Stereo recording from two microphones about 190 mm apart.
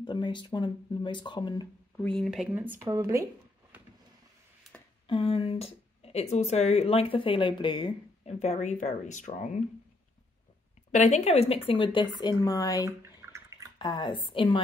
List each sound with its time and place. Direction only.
0.0 s a woman's voice: 25° left (ahead or behind)
2.0 s speech: 5° left (ahead or behind); by 3.3 s 15° right (ahead or behind)
5.0 s a woman's voice: 30° left (ahead or behind)
8.4 s speech: 40° left (ahead or behind)
10.9 s a woman's voice: 35° left (ahead or behind); by 12.8 s 20° left (ahead or behind)
13.2 s drip: 15° right (ahead or behind)
13.7 s a woman's voice: 25° left (ahead or behind)